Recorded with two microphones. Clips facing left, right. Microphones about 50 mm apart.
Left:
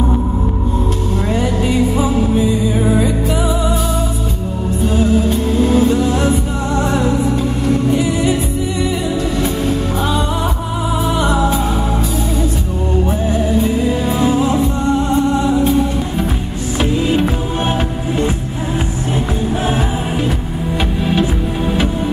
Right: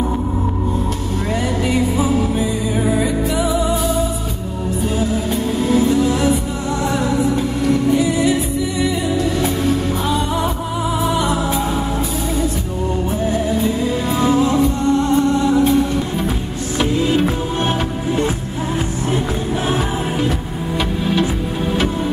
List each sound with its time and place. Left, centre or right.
5.6 s music: left
7.6 s music: left
14.3 s music: left
17.1 s music: left